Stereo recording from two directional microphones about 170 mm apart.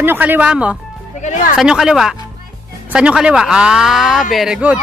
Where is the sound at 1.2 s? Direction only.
45° left (ahead or behind).